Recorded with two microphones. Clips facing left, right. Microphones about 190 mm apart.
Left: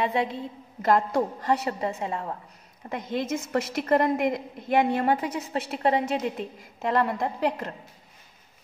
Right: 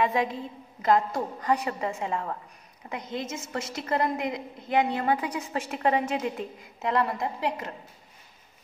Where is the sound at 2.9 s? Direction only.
55° left (ahead or behind).